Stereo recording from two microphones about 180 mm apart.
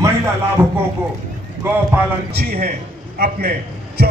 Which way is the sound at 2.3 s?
60° right (ahead or behind).